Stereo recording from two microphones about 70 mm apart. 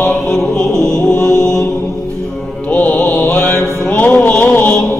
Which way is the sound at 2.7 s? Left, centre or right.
Left.